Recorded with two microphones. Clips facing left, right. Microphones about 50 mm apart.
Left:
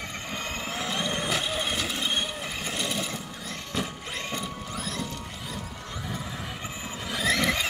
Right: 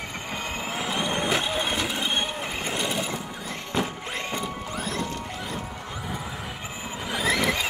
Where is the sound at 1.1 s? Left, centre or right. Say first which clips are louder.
Right 3 dB; right.